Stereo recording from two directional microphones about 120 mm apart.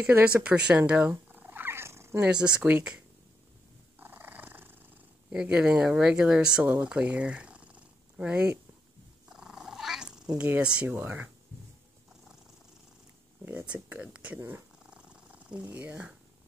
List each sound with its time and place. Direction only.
0.0 s cat: 10° right (ahead or behind)
2.2 s speech: 10° right (ahead or behind)
4.0 s dog: 15° right (ahead or behind)
5.3 s speech: 5° right (ahead or behind)
9.3 s cat: 5° right (ahead or behind)
13.5 s speech: 15° right (ahead or behind)
14.9 s purr: 10° right (ahead or behind)